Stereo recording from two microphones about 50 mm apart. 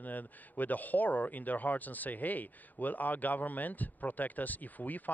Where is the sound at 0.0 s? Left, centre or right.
Left.